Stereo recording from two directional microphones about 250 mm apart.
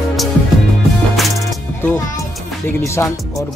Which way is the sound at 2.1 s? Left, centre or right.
Centre.